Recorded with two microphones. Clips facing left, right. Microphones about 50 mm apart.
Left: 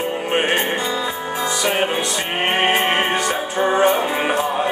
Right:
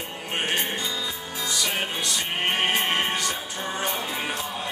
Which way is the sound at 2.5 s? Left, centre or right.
Left.